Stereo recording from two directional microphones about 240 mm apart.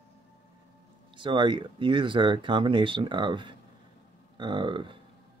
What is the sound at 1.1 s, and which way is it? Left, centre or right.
Speech, centre.